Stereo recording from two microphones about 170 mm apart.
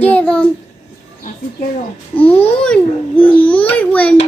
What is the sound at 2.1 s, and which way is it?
A child's voice, 10° left (ahead or behind).